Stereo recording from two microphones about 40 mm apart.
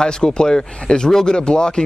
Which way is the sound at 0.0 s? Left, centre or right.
Centre.